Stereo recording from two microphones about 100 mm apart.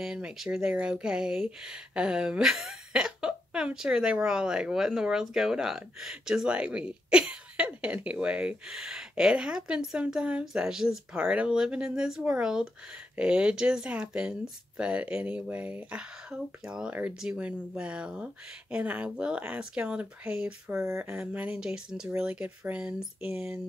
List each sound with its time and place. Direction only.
0.0 s speech: 5° right (ahead or behind)
20.7 s speech: 25° right (ahead or behind)
21.2 s speech: 15° right (ahead or behind)